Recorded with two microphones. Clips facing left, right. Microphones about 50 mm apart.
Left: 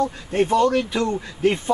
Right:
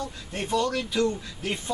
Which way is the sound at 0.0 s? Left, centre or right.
Left.